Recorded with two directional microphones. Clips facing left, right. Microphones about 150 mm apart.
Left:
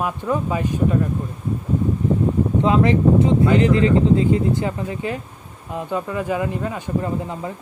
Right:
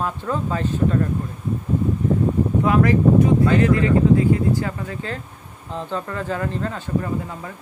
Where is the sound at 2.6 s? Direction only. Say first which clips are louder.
Even; 25° left (ahead or behind).